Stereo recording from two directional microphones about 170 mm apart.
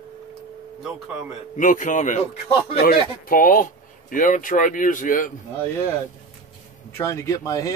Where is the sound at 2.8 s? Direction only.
60° left (ahead or behind).